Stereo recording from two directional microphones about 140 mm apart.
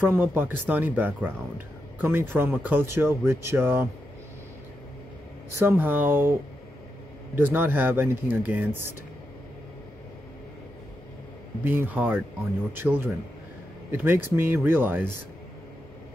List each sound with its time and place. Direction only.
0.0 s speech: 15° right (ahead or behind)
5.6 s speech: 15° right (ahead or behind)
7.3 s speech: 15° right (ahead or behind)
11.6 s speech: 15° right (ahead or behind)